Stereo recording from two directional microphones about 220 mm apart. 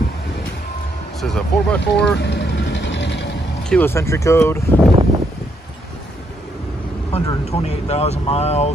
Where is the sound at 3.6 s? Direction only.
5° left (ahead or behind).